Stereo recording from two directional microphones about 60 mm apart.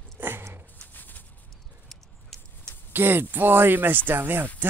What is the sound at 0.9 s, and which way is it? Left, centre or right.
Bird, left.